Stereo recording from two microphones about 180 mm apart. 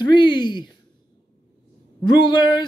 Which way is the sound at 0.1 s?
25° left (ahead or behind).